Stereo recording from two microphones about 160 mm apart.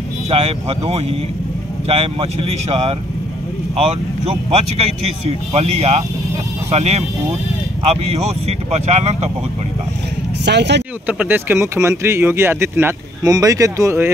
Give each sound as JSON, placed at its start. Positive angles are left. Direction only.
{"t": 0.3, "sound": "speech", "side_deg": -40}
{"t": 4.3, "sound": "speech", "side_deg": -40}
{"t": 10.4, "sound": "speech", "side_deg": -90}
{"t": 11.1, "sound": "speech", "side_deg": -10}